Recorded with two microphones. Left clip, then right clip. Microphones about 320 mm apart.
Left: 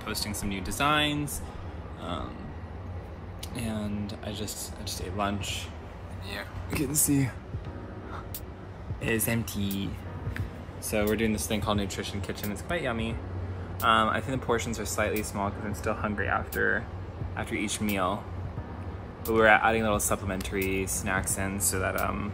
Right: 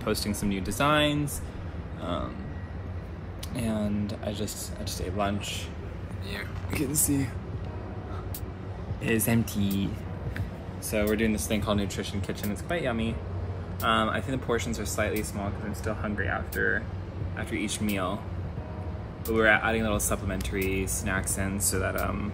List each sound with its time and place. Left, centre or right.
0.0 s speech: centre
3.5 s speech: centre
6.3 s speech: centre
9.0 s speech: centre
19.2 s speech: centre